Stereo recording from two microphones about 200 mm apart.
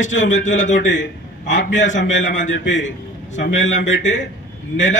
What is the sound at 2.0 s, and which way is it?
Speech, 65° left (ahead or behind).